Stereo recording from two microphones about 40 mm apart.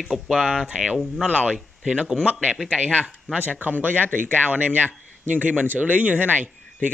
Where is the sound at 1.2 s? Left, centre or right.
Right.